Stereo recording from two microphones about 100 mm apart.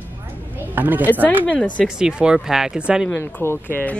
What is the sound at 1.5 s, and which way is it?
Speech, 15° left (ahead or behind).